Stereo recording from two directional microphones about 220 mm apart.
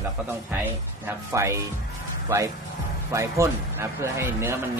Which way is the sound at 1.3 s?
15° right (ahead or behind).